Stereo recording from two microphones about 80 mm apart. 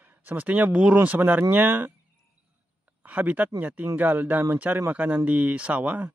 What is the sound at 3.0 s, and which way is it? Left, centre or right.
Speech, centre.